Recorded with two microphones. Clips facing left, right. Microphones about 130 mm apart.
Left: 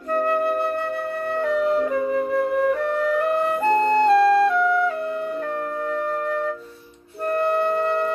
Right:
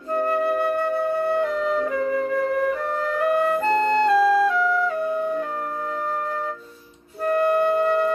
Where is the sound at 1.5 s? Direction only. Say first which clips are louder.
Left 3 dB; 5° left (ahead or behind).